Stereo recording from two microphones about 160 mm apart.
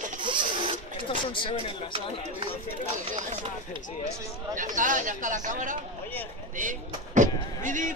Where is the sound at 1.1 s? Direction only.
35° left (ahead or behind).